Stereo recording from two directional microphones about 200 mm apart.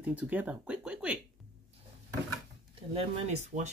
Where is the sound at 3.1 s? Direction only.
35° right (ahead or behind).